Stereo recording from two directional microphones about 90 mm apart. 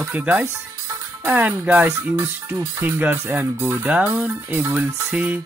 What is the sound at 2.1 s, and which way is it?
Speech, 25° right (ahead or behind).